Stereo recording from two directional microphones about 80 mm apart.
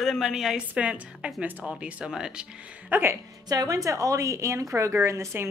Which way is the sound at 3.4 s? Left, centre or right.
Right.